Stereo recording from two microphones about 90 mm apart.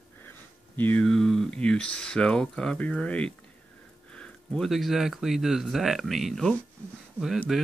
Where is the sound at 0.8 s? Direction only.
20° left (ahead or behind).